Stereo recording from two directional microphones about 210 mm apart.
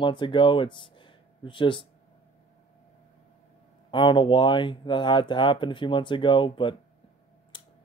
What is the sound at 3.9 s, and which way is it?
Speech, 25° left (ahead or behind).